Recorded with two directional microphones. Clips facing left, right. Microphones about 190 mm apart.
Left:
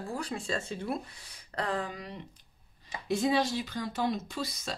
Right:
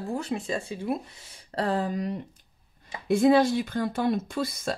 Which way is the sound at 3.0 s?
55° right (ahead or behind).